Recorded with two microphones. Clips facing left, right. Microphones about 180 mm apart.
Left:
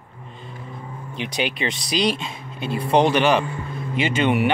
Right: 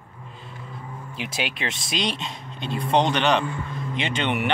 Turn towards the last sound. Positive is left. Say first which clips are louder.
# left 6 dB
turn(degrees=5)  # may be behind; listen again after turning